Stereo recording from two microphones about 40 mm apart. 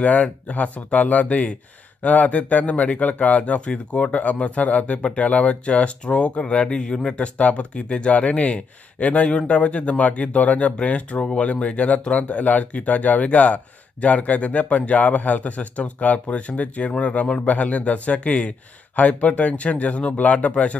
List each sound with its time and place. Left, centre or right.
0.0 s speech: left
8.1 s speech: left